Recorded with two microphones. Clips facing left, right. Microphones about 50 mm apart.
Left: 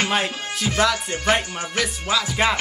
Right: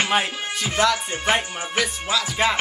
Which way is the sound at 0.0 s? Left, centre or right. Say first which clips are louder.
Right 1 dB; centre.